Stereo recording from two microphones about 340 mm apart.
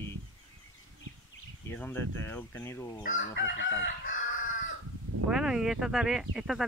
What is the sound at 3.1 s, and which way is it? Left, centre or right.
Chicken, left.